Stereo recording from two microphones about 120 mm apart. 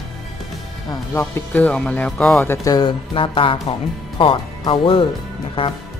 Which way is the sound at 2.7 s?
40° left (ahead or behind).